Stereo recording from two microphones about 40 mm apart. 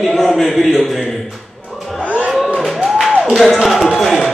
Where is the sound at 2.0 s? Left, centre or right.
Right.